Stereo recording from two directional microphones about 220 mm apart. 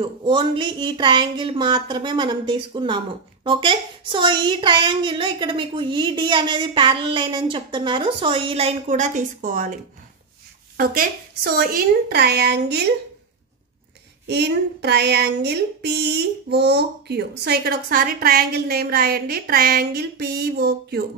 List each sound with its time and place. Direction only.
0.0 s a woman's voice: 20° right (ahead or behind); by 9.8 s 35° right (ahead or behind)
10.8 s speech: 40° right (ahead or behind)
14.2 s speech: 50° right (ahead or behind)